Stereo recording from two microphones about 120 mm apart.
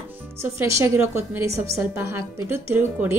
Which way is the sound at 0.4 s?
20° right (ahead or behind).